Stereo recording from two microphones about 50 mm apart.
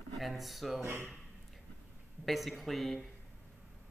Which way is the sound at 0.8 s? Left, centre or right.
Right.